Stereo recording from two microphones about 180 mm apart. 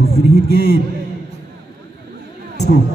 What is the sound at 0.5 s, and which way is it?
Speech, 60° left (ahead or behind).